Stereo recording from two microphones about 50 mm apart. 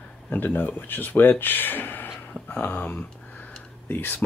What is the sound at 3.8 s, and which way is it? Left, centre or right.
Speech, left.